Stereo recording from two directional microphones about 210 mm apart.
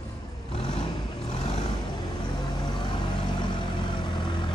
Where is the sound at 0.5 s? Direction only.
25° left (ahead or behind).